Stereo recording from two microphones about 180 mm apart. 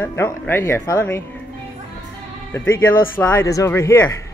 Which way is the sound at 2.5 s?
15° left (ahead or behind).